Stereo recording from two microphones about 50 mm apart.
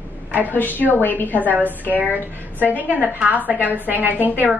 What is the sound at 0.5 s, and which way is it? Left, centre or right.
A woman's voice, left.